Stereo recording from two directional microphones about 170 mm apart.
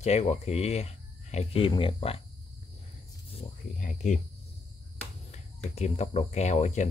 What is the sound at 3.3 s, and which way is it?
Speech, 45° left (ahead or behind).